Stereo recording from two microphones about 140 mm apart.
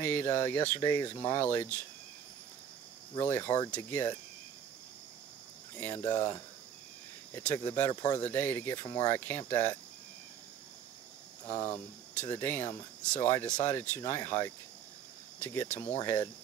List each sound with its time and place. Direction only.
0.0 s speech: 15° left (ahead or behind)
3.2 s speech: 15° left (ahead or behind)
5.8 s speech: 15° left (ahead or behind)
8.2 s speech: 15° left (ahead or behind)
11.6 s speech: 15° left (ahead or behind)